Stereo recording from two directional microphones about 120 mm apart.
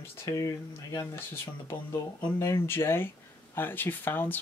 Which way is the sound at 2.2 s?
25° left (ahead or behind).